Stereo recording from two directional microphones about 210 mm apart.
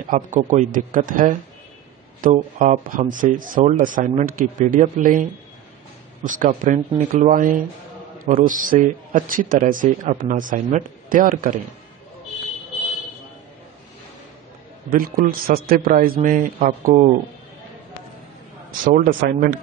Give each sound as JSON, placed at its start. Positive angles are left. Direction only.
{"t": 0.4, "sound": "speech", "side_deg": -35}
{"t": 14.9, "sound": "speech", "side_deg": -45}
{"t": 18.9, "sound": "speech", "side_deg": -40}